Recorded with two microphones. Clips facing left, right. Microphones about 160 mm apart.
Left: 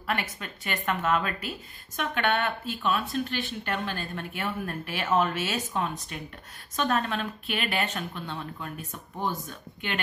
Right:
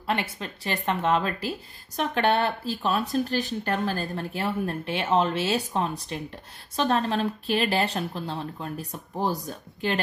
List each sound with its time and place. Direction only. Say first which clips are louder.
0.0 s a woman's voice: right 3 dB; 30° right (ahead or behind)